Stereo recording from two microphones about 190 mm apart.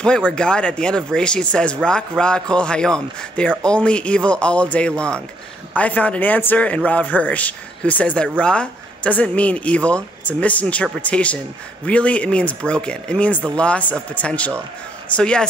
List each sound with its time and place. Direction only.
0.0 s speech: 5° left (ahead or behind)